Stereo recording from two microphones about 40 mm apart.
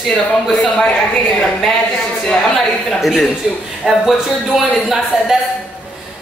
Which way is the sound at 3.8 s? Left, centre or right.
Centre.